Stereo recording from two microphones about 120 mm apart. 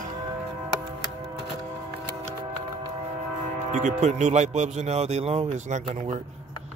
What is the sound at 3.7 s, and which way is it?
Speech, 85° right.